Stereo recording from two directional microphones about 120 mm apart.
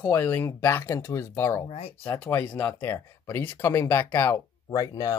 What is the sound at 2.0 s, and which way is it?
Speech, 20° left (ahead or behind).